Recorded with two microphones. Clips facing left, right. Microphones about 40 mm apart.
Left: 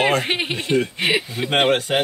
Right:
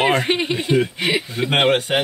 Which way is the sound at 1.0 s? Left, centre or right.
Centre.